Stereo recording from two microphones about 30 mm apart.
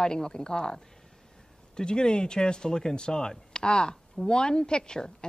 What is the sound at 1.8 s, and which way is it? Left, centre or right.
A woman's voice, left.